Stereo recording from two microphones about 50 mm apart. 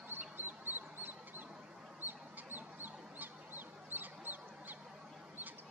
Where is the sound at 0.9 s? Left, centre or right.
Right.